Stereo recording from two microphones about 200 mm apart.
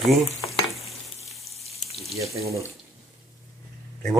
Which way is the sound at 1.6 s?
30° left (ahead or behind).